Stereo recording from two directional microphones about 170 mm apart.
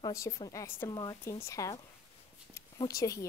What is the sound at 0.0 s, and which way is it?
Speech, 20° left (ahead or behind).